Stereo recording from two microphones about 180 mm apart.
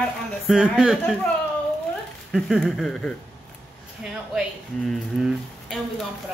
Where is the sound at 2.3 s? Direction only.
Centre (ahead or behind).